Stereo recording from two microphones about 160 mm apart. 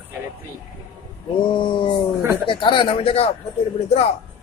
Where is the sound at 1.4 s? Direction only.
30° left (ahead or behind).